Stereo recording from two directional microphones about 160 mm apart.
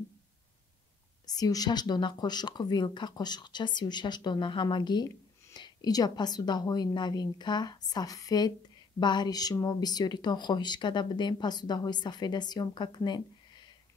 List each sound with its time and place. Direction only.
1.2 s speech: 25° left (ahead or behind)